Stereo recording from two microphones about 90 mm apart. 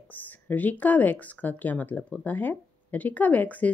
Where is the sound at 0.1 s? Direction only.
20° left (ahead or behind).